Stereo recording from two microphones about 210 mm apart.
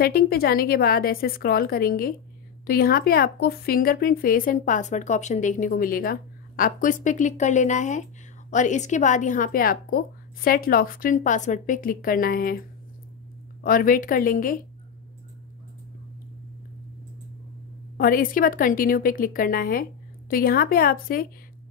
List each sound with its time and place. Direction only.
0.0 s a woman's voice: 45° left (ahead or behind)
13.6 s a woman's voice: 45° left (ahead or behind)
17.9 s a woman's voice: 45° left (ahead or behind)